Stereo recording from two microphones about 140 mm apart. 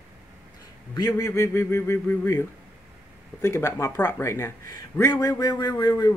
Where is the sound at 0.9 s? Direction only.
30° left (ahead or behind).